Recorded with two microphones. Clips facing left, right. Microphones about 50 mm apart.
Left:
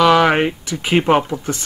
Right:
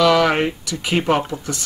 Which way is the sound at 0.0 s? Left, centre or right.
Left.